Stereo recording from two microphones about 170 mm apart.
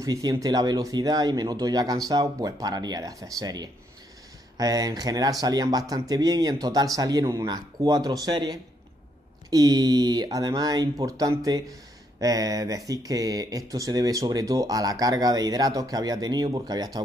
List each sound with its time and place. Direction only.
0.0 s speech: 20° right (ahead or behind)